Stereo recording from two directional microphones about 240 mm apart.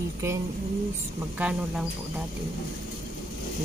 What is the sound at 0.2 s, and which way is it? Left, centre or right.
Speech, centre.